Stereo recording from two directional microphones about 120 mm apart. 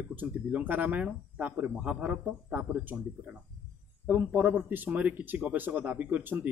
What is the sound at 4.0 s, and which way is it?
Speech, 15° right (ahead or behind).